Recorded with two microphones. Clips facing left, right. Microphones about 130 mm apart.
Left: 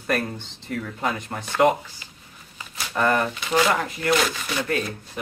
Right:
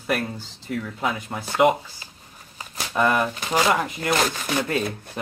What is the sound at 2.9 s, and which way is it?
Speech, 10° right (ahead or behind).